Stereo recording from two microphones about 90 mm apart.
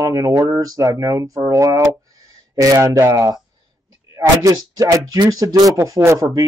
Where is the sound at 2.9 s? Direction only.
35° right (ahead or behind).